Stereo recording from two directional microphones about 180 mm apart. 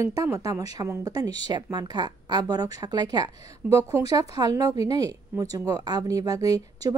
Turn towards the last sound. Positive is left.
turn(degrees=-20)  # may be behind; listen again after turning